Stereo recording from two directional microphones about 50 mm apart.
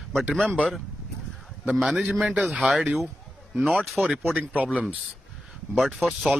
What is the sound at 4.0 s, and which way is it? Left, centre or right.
Speech, centre.